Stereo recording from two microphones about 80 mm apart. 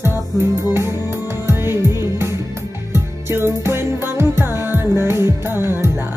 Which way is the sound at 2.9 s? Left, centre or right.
Right.